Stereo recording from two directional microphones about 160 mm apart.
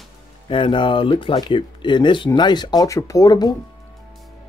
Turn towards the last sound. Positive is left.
turn(degrees=25)  # may be behind; listen again after turning